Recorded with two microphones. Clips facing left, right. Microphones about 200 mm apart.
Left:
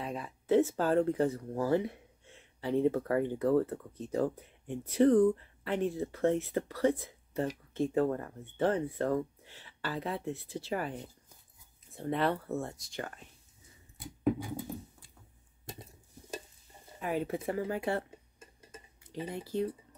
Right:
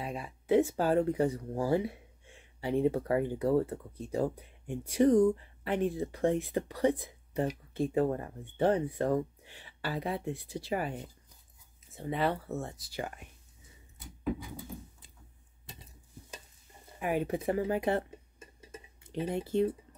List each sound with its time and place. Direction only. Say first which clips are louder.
0.0 s speech: even; 10° right (ahead or behind)
11.9 s speech: left 1 dB; centre (ahead or behind)
17.0 s speech: right 2 dB; 15° right (ahead or behind)
19.3 s speech: right 5 dB; 25° right (ahead or behind)